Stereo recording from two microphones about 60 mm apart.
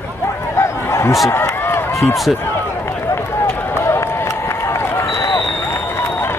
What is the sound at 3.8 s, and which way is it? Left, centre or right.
Run, left.